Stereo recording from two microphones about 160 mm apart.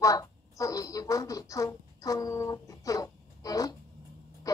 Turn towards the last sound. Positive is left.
turn(degrees=20)  # may be behind; listen again after turning